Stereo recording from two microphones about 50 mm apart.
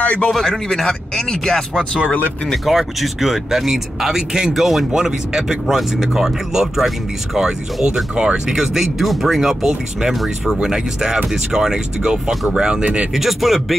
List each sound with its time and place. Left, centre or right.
0.0 s a sound: left
0.3 s speech: centre
2.0 s speech: left
2.6 s speech: centre
8.5 s speech: centre
12.8 s speech: right
13.1 s speech: centre